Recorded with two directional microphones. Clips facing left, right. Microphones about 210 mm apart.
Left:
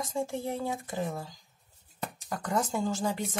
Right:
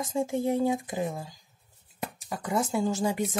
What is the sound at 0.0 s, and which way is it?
Speech, 20° right (ahead or behind).